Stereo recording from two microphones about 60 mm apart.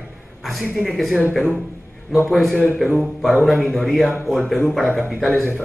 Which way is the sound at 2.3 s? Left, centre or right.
Centre.